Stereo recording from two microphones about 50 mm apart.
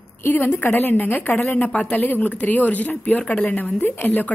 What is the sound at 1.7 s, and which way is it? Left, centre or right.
Speech, left.